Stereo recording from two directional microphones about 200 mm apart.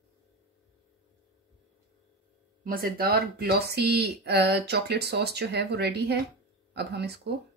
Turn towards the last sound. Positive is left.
turn(degrees=-55)  # may be behind; listen again after turning